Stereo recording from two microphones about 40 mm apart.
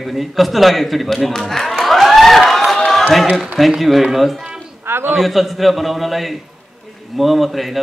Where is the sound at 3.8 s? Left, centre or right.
Centre.